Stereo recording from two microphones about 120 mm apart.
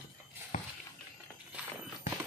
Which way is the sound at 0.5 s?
90° left.